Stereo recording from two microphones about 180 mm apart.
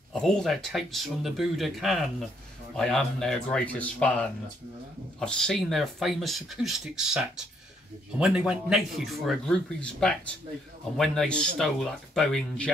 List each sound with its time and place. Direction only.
0.1 s speech: 5° left (ahead or behind)